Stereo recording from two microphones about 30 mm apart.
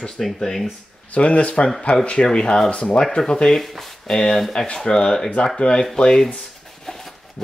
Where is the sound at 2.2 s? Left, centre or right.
Left.